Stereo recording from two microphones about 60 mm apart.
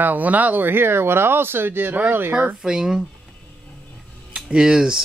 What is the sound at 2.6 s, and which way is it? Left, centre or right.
Speech, centre.